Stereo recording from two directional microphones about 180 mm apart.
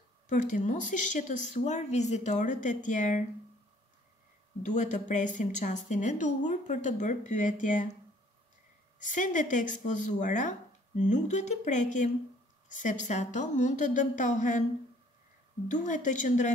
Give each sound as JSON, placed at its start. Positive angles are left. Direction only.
{"t": 0.3, "sound": "speech", "side_deg": 45}
{"t": 4.6, "sound": "speech", "side_deg": 45}
{"t": 9.0, "sound": "speech", "side_deg": 45}
{"t": 15.7, "sound": "speech", "side_deg": 45}